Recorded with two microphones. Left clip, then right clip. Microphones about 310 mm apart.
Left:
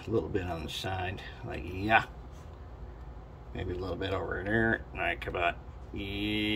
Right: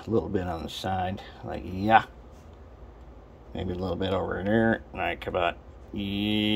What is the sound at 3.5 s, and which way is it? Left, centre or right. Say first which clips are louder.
Speech: right 5 dB; right.